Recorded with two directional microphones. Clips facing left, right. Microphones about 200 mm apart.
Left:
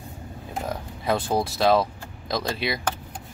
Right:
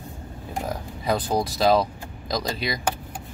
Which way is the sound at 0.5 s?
Centre (ahead or behind).